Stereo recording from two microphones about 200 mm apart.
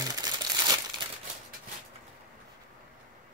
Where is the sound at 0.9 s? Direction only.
25° right (ahead or behind).